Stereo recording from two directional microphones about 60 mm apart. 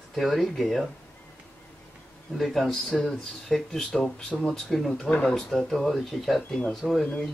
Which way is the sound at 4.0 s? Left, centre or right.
Centre.